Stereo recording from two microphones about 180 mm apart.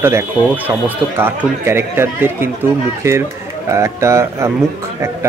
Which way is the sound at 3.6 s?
15° right (ahead or behind).